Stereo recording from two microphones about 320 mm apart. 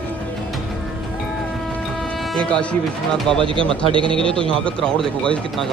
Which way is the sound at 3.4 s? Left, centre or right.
Centre.